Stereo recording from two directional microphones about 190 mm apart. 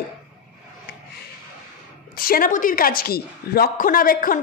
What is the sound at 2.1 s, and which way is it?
A woman's voice, 50° left (ahead or behind).